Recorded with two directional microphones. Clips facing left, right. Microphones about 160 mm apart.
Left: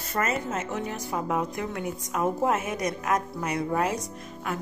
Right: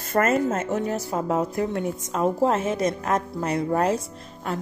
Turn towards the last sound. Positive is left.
turn(degrees=-30)  # may be behind; listen again after turning